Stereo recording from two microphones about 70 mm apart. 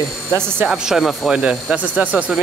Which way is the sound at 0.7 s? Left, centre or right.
Centre.